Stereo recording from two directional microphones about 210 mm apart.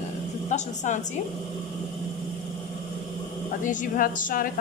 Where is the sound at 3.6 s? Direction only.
40° left (ahead or behind).